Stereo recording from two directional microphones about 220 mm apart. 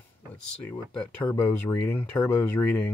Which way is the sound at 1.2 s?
10° left (ahead or behind).